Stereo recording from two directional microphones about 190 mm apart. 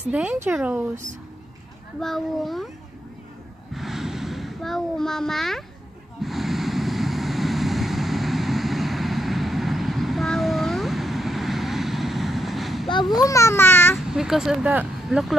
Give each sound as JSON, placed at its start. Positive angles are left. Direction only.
{"t": 0.1, "sound": "speech", "side_deg": -5}
{"t": 2.0, "sound": "a child's voice", "side_deg": 0}
{"t": 3.7, "sound": "a sound", "side_deg": 0}
{"t": 6.2, "sound": "waves", "side_deg": 0}
{"t": 13.1, "sound": "speech", "side_deg": 15}
{"t": 13.9, "sound": "speech", "side_deg": 0}